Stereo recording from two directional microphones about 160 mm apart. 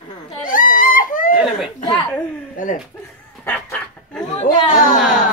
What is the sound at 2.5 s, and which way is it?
Speech, 55° left (ahead or behind).